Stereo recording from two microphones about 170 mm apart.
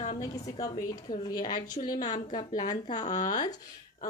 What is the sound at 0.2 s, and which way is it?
A woman's voice, 20° left (ahead or behind).